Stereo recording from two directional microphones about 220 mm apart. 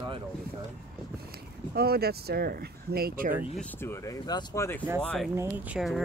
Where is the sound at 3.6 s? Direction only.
10° left (ahead or behind).